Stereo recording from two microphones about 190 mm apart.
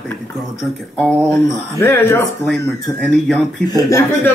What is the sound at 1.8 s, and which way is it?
Speech, 10° left (ahead or behind).